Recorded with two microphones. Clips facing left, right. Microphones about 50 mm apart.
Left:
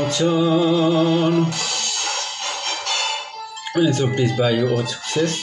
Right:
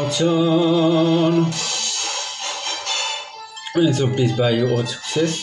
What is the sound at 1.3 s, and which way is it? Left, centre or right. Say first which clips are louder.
Music: even; left.